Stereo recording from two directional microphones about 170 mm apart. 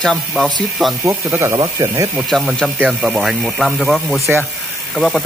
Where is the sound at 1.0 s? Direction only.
20° right (ahead or behind).